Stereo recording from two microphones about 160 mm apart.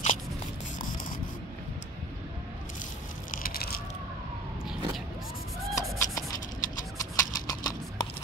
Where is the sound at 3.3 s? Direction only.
65° left (ahead or behind).